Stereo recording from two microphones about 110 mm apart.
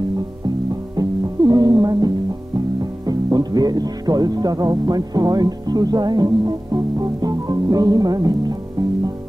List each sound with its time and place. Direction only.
1.4 s music: 45° right (ahead or behind)
2.8 s speech: 40° right (ahead or behind)